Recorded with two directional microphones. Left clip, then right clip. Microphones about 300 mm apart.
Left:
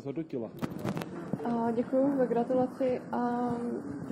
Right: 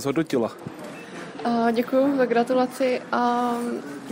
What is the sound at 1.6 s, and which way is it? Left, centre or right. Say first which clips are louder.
A woman's voice: right 7 dB; right.